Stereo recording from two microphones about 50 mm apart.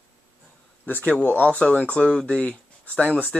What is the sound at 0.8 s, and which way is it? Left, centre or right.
Speech, left.